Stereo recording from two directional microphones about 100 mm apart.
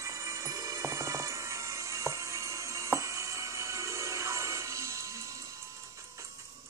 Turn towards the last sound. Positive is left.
turn(degrees=-35)  # may be behind; listen again after turning